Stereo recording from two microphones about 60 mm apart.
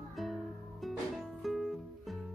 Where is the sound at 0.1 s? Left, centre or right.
Centre.